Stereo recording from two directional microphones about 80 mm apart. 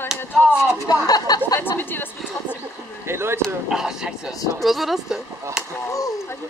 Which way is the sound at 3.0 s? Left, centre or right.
Right.